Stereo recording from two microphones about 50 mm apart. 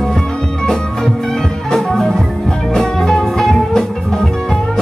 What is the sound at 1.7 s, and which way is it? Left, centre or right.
Music, centre.